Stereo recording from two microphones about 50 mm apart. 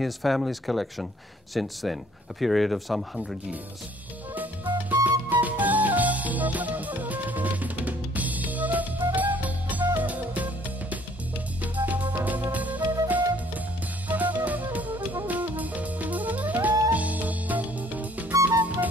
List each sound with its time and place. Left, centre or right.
0.0 s speech: centre
4.4 s music: right
11.6 s drum kit: right
12.2 s music: right